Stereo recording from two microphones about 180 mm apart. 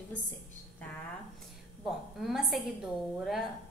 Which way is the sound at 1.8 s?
Centre (ahead or behind).